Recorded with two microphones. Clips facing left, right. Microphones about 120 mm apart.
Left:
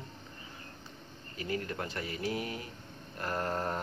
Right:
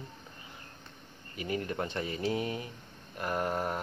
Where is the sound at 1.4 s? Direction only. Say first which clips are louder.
Right 2 dB; 20° right (ahead or behind).